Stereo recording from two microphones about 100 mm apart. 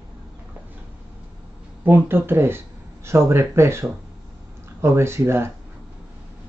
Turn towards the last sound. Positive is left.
turn(degrees=-25)  # may be behind; listen again after turning